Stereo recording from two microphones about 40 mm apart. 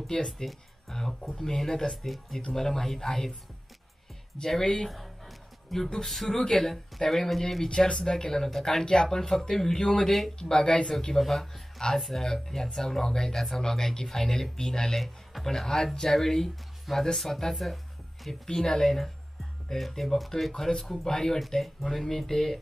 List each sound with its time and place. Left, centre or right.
0.0 s speech: centre
0.9 s music: centre
1.4 s speech: centre
4.4 s speech: centre
4.8 s music: centre
6.2 s speech: centre